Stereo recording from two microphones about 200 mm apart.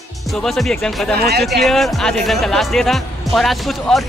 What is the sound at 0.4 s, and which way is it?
Speech, centre (ahead or behind).